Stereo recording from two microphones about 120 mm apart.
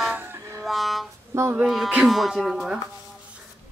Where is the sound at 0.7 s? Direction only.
Centre (ahead or behind).